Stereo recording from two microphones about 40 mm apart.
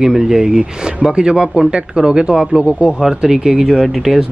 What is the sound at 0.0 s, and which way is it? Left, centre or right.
Speech, centre.